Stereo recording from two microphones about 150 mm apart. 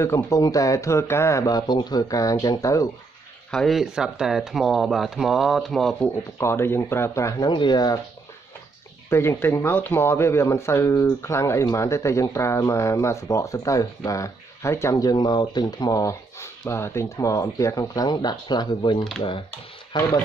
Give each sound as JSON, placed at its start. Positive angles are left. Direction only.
{"t": 0.0, "sound": "speech", "side_deg": 20}
{"t": 3.5, "sound": "speech", "side_deg": 0}
{"t": 6.1, "sound": "speech", "side_deg": 15}
{"t": 9.1, "sound": "speech", "side_deg": 15}